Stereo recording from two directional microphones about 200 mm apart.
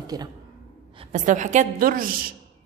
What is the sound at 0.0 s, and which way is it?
Speech, 20° right (ahead or behind).